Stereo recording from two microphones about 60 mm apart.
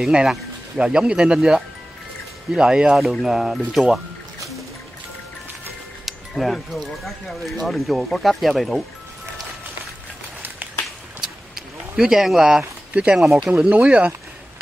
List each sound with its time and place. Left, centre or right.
0.0 s speech: centre
6.0 s speech: centre
11.1 s a sound: centre
12.9 s speech: centre
13.2 s speech: centre
13.5 s speech: right